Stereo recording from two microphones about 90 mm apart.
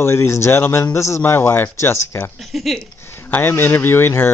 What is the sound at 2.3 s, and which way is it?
Speech, centre (ahead or behind).